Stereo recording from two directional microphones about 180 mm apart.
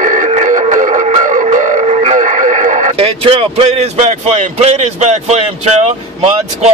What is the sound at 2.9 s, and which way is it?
Speech, 30° right (ahead or behind).